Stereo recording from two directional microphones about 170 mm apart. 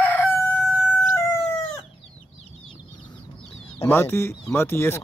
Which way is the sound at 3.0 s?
20° left (ahead or behind).